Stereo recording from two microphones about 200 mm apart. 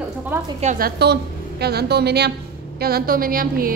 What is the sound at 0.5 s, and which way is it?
A woman's voice, 40° right (ahead or behind).